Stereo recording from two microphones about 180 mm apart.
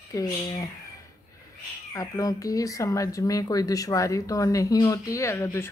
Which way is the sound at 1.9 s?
20° left (ahead or behind).